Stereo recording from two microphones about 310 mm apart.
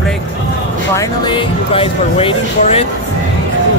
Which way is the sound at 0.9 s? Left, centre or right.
Centre.